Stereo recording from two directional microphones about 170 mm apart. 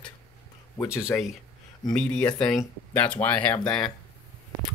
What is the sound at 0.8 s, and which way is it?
Speech, 5° right (ahead or behind).